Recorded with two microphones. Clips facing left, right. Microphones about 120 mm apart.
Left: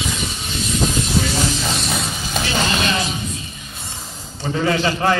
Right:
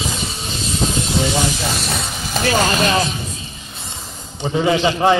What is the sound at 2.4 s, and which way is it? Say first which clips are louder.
Speech: right 5 dB; 45° right (ahead or behind).